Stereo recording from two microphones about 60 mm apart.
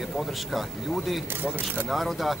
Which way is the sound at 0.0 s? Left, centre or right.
Centre.